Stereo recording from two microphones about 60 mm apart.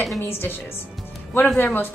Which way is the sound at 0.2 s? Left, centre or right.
Left.